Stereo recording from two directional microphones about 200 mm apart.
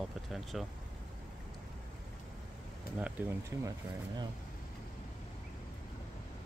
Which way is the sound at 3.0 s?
10° right (ahead or behind).